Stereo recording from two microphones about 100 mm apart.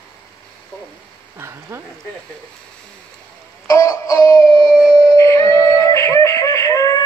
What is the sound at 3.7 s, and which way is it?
Music, 35° left (ahead or behind).